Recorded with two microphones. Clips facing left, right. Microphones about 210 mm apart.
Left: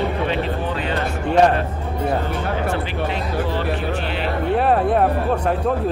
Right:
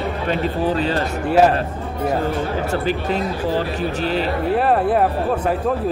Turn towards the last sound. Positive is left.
turn(degrees=0)  # may be behind; listen again after turning